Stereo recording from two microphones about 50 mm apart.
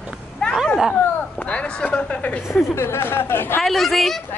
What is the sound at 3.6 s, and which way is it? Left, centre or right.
Speech, centre.